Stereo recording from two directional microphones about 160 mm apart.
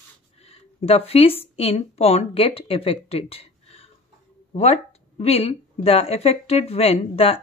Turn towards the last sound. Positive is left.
turn(degrees=40)  # may be behind; listen again after turning